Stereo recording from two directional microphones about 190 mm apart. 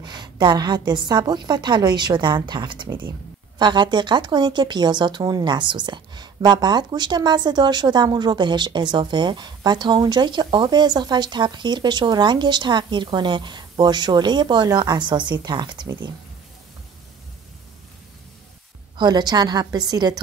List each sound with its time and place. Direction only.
0.0 s speech: 20° right (ahead or behind)
18.9 s speech: 20° right (ahead or behind)